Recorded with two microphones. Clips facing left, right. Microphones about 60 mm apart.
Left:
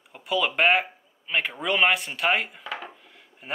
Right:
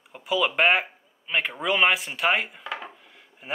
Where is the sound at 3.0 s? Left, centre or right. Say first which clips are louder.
Right 1 dB; centre.